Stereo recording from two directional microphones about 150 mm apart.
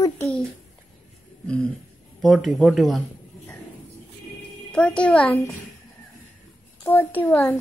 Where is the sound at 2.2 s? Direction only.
Centre (ahead or behind).